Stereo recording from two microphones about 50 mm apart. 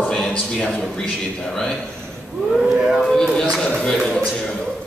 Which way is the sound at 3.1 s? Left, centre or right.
Centre.